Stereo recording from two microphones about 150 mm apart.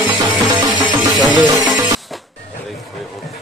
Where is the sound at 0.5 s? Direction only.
30° right (ahead or behind).